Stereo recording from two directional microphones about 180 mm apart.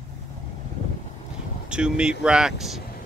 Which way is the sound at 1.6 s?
5° right (ahead or behind).